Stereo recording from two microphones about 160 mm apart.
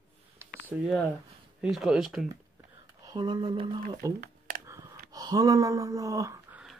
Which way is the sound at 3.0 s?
25° right (ahead or behind).